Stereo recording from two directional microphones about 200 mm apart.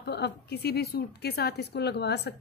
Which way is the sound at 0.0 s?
55° left (ahead or behind).